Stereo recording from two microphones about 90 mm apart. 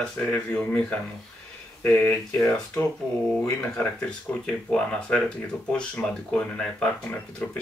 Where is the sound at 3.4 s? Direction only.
15° left (ahead or behind).